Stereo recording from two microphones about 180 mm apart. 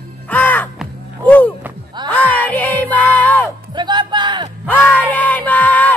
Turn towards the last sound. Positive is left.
turn(degrees=10)  # may be behind; listen again after turning